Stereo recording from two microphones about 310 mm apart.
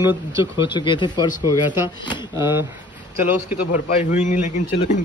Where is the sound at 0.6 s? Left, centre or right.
Centre.